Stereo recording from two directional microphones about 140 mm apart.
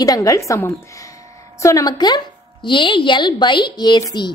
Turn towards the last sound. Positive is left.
turn(degrees=30)  # may be behind; listen again after turning